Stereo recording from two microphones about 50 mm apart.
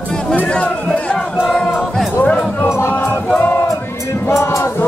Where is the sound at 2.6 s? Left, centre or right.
Left.